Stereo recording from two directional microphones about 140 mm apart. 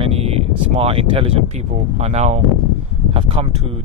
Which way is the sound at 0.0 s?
45° right (ahead or behind).